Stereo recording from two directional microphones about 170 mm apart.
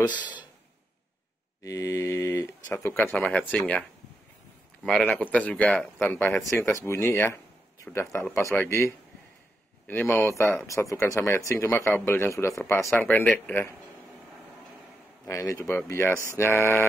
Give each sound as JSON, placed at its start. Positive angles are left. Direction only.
{"t": 1.6, "sound": "speech", "side_deg": 20}
{"t": 3.1, "sound": "speech", "side_deg": 5}
{"t": 4.8, "sound": "speech", "side_deg": 5}
{"t": 15.2, "sound": "speech", "side_deg": 20}